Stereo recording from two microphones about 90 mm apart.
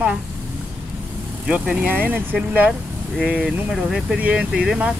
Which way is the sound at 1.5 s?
15° right (ahead or behind).